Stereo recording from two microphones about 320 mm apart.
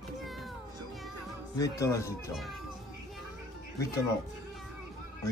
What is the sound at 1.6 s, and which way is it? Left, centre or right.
Speech, centre.